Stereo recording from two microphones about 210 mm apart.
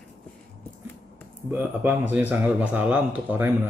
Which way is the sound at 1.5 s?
10° right (ahead or behind).